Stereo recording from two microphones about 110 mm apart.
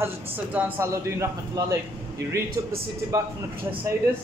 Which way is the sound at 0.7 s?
25° right (ahead or behind).